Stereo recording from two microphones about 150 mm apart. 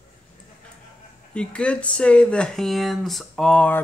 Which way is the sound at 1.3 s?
5° left (ahead or behind).